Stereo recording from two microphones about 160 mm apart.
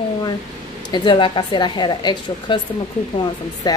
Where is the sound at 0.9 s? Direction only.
30° left (ahead or behind).